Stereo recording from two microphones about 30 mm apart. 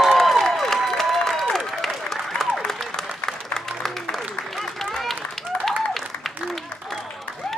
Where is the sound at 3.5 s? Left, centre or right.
Centre.